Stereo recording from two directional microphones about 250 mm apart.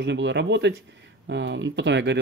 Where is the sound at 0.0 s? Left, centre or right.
Right.